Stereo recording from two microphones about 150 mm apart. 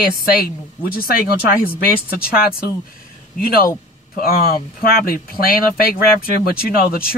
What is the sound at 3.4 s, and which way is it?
Speech, 80° left.